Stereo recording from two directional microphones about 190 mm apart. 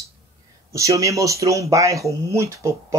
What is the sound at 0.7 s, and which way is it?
Speech, 15° right (ahead or behind).